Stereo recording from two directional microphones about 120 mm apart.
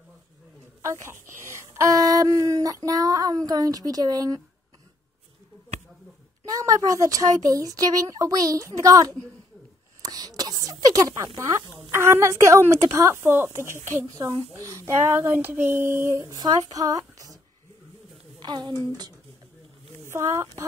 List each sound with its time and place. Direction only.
1.0 s speech: 20° right (ahead or behind)
6.4 s a woman's voice: 30° right (ahead or behind)
10.0 s a sound: 30° right (ahead or behind)
11.9 s a woman's voice: 20° right (ahead or behind)
18.4 s a woman's voice: 35° right (ahead or behind)